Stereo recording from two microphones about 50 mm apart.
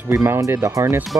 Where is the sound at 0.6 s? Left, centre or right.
Right.